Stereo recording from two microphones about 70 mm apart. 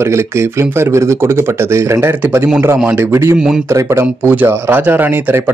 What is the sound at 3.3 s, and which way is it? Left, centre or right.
Speech, centre.